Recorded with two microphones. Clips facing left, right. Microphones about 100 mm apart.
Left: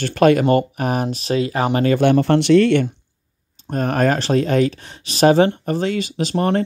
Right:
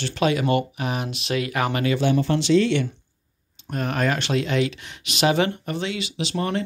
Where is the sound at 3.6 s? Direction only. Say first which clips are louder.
Left 6 dB; 40° left (ahead or behind).